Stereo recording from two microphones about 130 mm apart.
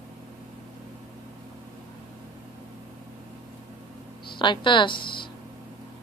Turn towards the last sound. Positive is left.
turn(degrees=40)  # may be behind; listen again after turning